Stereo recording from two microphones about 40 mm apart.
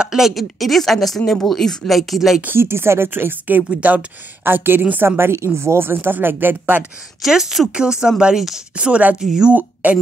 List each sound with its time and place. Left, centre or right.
0.0 s speech: centre
0.3 s speech: centre
2.5 s speech: right
3.4 s speech: right
4.5 s speech: right
5.0 s speech: right
5.6 s speech: right
7.2 s speech: centre
7.7 s speech: centre
9.2 s speech: centre
9.5 s a woman's voice: right